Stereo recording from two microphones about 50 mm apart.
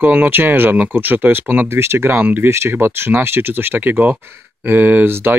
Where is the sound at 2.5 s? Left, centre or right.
Right.